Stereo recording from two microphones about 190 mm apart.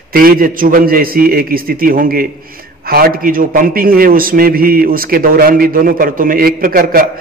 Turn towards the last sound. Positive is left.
turn(degrees=-50)  # may be behind; listen again after turning